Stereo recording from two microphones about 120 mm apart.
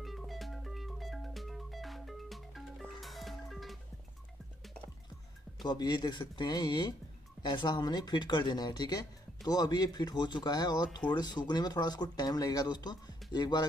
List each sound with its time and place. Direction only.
0.0 s music: centre (ahead or behind)
5.6 s speech: 35° left (ahead or behind)